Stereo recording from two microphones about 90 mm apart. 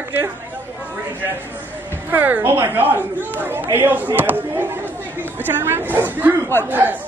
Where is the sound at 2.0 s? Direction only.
20° right (ahead or behind).